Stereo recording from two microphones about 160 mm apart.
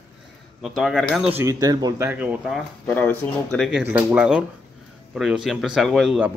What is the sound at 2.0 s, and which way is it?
Speech, 10° right (ahead or behind).